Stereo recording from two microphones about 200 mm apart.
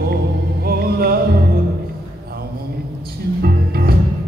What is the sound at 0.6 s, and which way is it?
Music, 50° right (ahead or behind).